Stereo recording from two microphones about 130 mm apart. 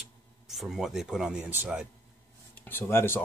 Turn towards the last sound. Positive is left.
turn(degrees=20)  # may be behind; listen again after turning